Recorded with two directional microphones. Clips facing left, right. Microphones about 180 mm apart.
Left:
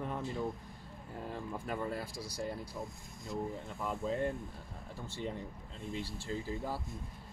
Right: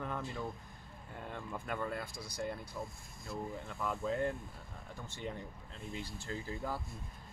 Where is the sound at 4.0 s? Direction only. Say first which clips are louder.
Left 1 dB; 30° left (ahead or behind).